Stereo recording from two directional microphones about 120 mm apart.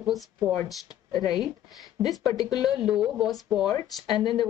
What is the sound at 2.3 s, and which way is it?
Speech, 30° left (ahead or behind).